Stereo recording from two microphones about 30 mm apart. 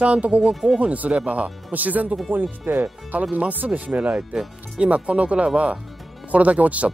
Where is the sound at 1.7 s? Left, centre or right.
Right.